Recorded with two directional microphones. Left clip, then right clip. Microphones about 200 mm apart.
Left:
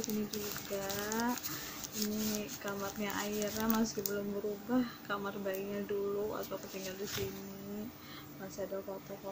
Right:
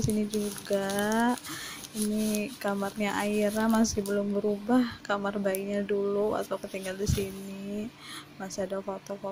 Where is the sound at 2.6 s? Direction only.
40° right (ahead or behind).